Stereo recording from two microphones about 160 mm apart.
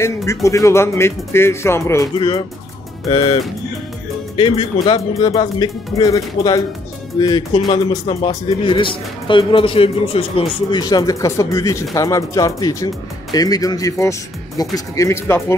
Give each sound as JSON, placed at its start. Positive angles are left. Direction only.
{"t": 0.0, "sound": "speech", "side_deg": 20}
{"t": 3.1, "sound": "speech", "side_deg": 35}
{"t": 4.4, "sound": "speech", "side_deg": 35}